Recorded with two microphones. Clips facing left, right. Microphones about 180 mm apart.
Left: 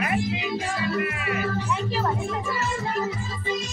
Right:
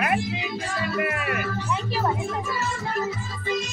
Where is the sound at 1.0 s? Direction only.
55° right (ahead or behind).